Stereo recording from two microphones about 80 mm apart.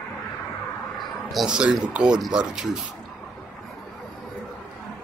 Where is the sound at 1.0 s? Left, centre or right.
Centre.